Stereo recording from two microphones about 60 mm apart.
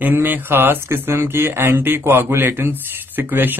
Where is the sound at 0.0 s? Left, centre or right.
Right.